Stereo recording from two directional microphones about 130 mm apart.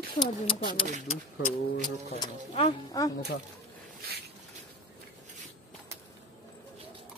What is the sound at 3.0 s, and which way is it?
Speech, 30° left (ahead or behind).